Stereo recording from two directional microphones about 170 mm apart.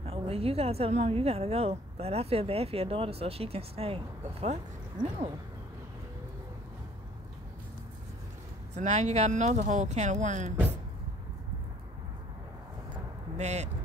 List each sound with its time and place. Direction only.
0.0 s a woman's voice: 35° right (ahead or behind)
8.7 s speech: 40° right (ahead or behind)
13.4 s a woman's voice: 40° right (ahead or behind)